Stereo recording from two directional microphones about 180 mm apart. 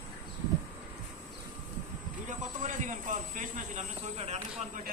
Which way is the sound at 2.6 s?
45° right (ahead or behind).